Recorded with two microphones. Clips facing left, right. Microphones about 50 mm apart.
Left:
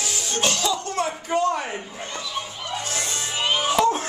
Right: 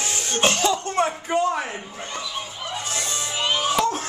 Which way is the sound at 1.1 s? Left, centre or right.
Centre.